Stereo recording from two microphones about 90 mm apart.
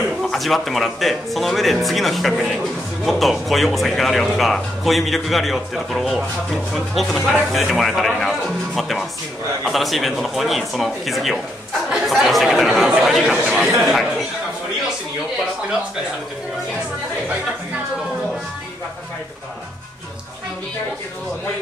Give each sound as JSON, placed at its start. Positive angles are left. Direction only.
{"t": 0.2, "sound": "speech", "side_deg": 0}
{"t": 13.3, "sound": "speech", "side_deg": -15}
{"t": 13.8, "sound": "speech", "side_deg": 0}